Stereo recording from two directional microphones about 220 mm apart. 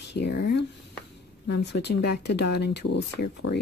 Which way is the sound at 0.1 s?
50° left (ahead or behind).